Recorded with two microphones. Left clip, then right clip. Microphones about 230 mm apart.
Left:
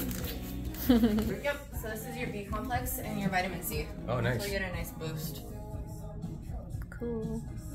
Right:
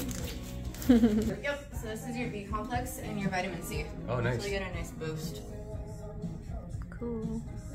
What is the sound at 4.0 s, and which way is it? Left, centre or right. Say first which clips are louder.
Speech: even; centre.